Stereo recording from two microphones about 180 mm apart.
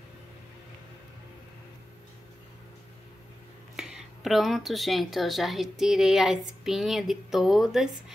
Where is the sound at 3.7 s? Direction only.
Centre (ahead or behind).